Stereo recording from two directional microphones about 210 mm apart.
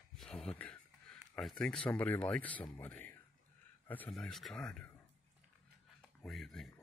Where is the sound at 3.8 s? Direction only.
5° left (ahead or behind).